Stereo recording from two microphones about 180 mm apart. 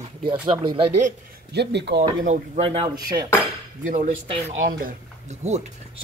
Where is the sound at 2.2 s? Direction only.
40° right (ahead or behind).